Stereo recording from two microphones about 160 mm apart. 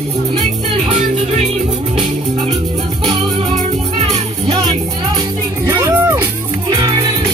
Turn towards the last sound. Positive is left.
turn(degrees=-15)  # may be behind; listen again after turning